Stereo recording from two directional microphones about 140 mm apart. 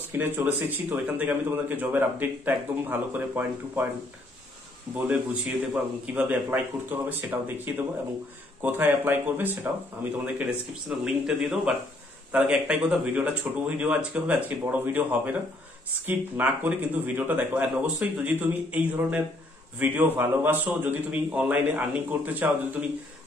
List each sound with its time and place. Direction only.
0.2 s a man's voice: 15° right (ahead or behind)
4.9 s a man's voice: 15° right (ahead or behind)
11.1 s a man's voice: 5° right (ahead or behind)